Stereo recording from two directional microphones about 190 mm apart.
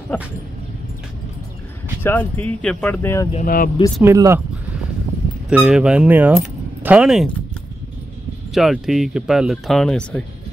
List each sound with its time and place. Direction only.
0.1 s speech: 10° left (ahead or behind)
2.0 s speech: 10° left (ahead or behind)
3.3 s speech: 45° left (ahead or behind)
4.0 s speech: 15° right (ahead or behind)
5.5 s speech: 5° right (ahead or behind)
8.5 s speech: centre (ahead or behind)